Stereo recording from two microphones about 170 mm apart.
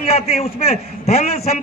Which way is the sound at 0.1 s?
35° left (ahead or behind).